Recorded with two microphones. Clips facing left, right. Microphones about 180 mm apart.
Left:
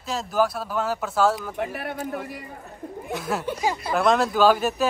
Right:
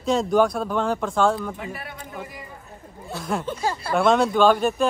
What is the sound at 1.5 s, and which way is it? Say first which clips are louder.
Speech: left 6 dB; 60° left (ahead or behind).